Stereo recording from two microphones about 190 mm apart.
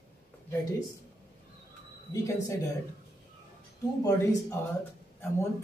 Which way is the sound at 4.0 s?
15° left (ahead or behind).